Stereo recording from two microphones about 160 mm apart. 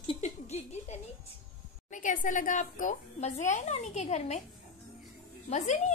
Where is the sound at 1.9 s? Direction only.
55° left (ahead or behind).